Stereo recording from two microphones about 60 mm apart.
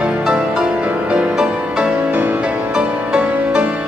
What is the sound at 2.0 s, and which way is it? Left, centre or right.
Music, right.